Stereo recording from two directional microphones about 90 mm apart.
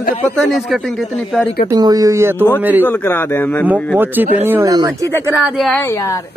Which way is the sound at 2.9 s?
25° left (ahead or behind).